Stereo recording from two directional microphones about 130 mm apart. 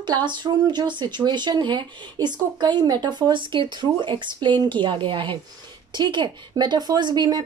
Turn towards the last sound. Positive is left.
turn(degrees=-35)  # may be behind; listen again after turning